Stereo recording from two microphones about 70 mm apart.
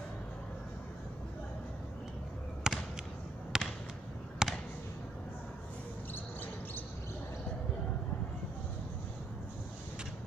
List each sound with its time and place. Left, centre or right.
2.6 s basketball bounce: centre
3.5 s a sound: centre
6.1 s basketball bounce: left